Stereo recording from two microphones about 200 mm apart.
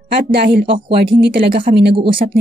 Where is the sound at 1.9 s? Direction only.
25° right (ahead or behind).